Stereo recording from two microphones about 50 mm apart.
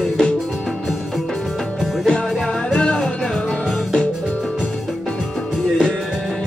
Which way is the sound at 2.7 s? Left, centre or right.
Centre.